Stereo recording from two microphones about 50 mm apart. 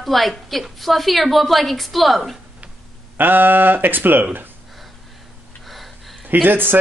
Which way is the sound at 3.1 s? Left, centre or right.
Right.